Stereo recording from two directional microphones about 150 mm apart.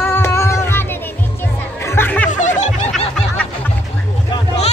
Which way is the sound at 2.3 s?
55° left (ahead or behind).